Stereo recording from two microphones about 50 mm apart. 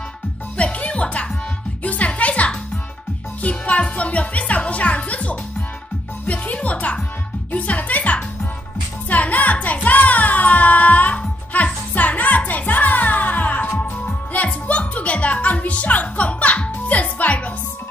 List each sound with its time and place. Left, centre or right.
0.6 s music: left